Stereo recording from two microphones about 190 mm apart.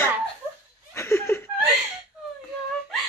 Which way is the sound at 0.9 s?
15° left (ahead or behind).